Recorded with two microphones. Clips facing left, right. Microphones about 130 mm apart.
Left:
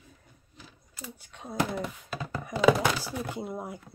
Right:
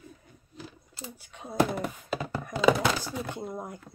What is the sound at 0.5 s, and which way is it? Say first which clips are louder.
Sewing machine: right 6 dB; 30° right (ahead or behind).